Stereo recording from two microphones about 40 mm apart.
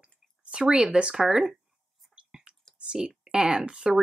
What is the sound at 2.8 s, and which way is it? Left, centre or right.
Speech, right.